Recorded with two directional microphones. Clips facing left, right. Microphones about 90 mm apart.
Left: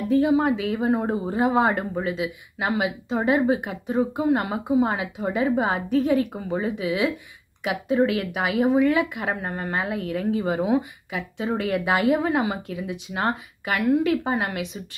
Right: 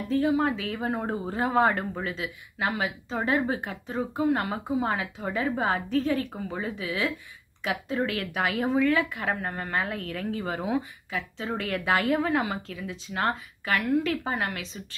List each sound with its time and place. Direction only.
0.1 s speech: 20° left (ahead or behind)